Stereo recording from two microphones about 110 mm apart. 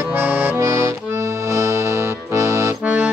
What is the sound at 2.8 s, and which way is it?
Accordion, 10° right (ahead or behind).